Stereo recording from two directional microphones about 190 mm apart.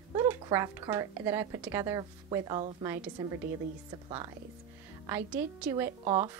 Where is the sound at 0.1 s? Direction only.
15° right (ahead or behind).